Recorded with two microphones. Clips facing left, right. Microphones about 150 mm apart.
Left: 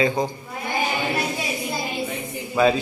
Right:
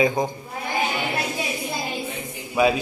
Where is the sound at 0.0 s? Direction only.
20° right (ahead or behind).